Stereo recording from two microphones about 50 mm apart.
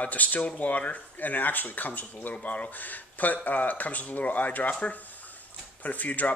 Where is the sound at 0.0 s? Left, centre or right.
Left.